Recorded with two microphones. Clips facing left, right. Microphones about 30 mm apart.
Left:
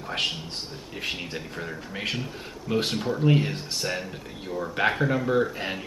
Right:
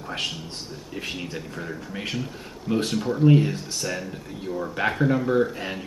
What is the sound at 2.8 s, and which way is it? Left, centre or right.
Speech, left.